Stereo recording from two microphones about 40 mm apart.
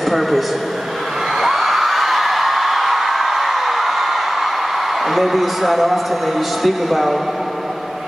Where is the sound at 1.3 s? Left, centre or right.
Centre.